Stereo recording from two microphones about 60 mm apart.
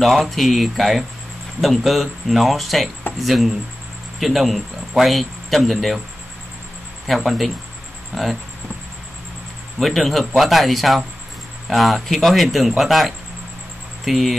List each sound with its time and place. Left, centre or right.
0.0 s speech: centre
7.1 s speech: centre
9.8 s speech: centre